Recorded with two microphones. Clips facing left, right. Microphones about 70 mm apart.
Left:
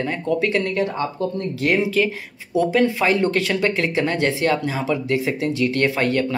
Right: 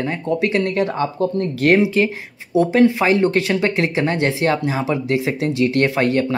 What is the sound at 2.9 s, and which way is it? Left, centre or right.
Speech, right.